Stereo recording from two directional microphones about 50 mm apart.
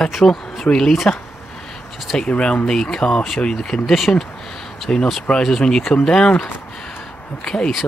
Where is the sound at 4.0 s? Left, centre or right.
Centre.